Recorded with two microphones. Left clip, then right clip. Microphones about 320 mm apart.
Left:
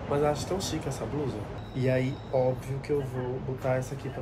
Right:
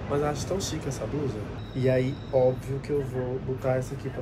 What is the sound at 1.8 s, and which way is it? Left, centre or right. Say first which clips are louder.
Speech: right 3 dB; centre.